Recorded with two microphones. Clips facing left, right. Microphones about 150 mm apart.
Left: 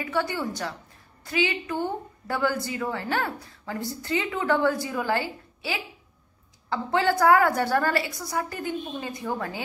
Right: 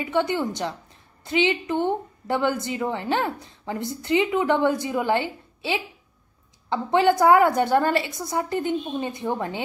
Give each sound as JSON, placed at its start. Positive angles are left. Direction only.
{"t": 0.0, "sound": "a woman's voice", "side_deg": -20}